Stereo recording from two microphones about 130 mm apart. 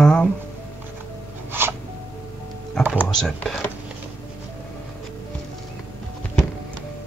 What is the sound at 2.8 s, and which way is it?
Music, 10° right (ahead or behind).